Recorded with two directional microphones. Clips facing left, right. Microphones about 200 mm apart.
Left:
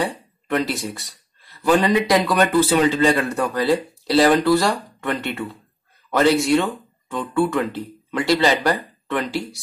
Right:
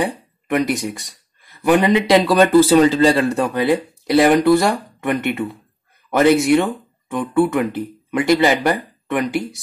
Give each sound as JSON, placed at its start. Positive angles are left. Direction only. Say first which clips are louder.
{"t": 0.0, "sound": "speech", "louder": "right 3 dB", "side_deg": -20}